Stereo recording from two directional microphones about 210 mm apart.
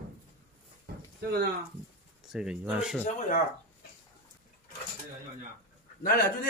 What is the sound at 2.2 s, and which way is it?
Speech, 5° right (ahead or behind).